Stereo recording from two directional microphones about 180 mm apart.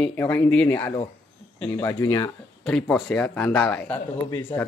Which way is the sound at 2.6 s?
10° left (ahead or behind).